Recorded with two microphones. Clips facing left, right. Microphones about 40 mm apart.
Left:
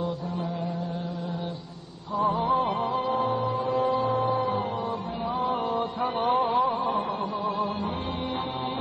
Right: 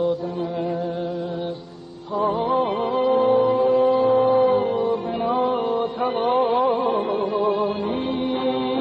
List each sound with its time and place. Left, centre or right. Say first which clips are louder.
2.1 s music: right 3 dB; right